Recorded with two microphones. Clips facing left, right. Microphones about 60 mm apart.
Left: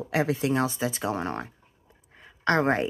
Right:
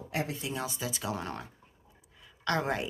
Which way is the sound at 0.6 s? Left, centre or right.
Left.